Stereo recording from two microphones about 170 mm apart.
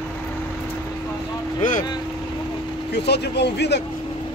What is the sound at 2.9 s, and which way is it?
Speech, 75° left (ahead or behind).